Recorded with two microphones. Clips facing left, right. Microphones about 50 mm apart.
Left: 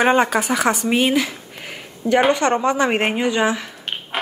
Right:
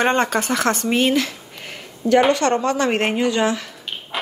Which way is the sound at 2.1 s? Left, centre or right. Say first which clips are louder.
Even; centre.